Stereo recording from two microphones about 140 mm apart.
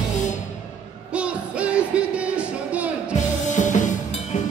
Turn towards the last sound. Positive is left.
turn(degrees=60)  # may be behind; listen again after turning